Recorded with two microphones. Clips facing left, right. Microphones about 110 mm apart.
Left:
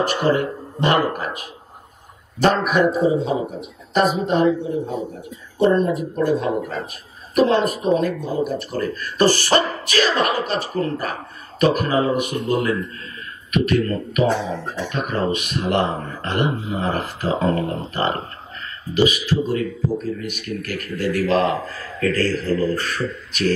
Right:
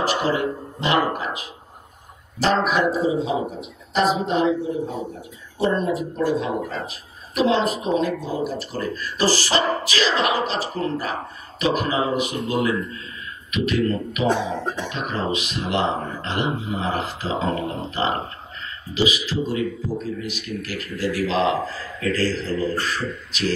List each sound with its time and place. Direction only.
0.0 s speech: 50° left (ahead or behind)
2.4 s speech: 50° left (ahead or behind)
6.1 s speech: 50° left (ahead or behind)
14.2 s speech: 15° right (ahead or behind)
14.9 s speech: 50° left (ahead or behind)